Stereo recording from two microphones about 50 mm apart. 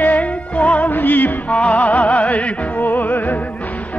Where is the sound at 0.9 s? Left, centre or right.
Left.